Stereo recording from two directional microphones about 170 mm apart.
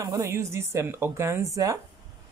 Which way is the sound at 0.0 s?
15° right (ahead or behind).